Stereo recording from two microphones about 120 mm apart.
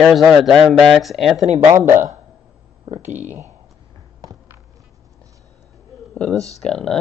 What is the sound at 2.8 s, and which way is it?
Speech, 70° right (ahead or behind).